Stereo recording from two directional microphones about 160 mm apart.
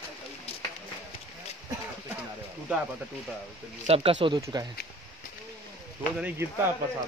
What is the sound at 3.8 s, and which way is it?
Speech, 35° right (ahead or behind).